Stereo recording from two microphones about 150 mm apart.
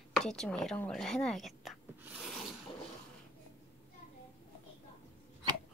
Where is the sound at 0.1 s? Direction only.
5° left (ahead or behind).